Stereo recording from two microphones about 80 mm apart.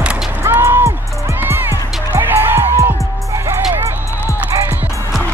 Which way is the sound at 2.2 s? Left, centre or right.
Right.